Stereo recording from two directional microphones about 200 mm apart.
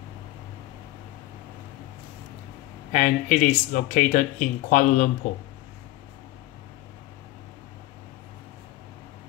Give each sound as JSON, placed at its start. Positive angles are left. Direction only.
{"t": 2.9, "sound": "speech", "side_deg": 35}